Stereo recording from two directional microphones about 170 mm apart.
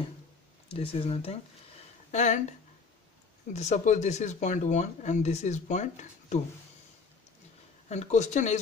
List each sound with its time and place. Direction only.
0.7 s speech: 35° left (ahead or behind)
3.5 s speech: 45° left (ahead or behind)
7.9 s speech: 45° left (ahead or behind)